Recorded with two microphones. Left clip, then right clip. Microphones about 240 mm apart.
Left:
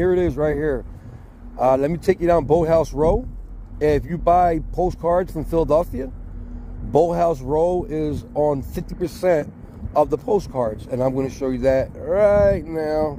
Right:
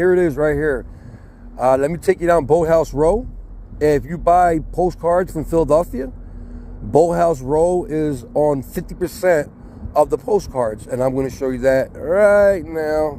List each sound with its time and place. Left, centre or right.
0.0 s a man's voice: centre